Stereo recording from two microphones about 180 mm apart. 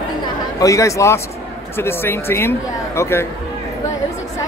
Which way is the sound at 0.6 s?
15° left (ahead or behind).